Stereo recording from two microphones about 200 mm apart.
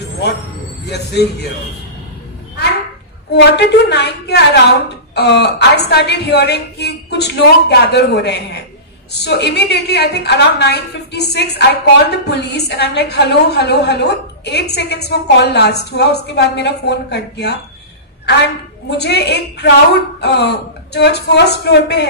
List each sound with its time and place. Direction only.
0.8 s a woman's voice: 55° left (ahead or behind)
3.4 s a woman's voice: 55° left (ahead or behind)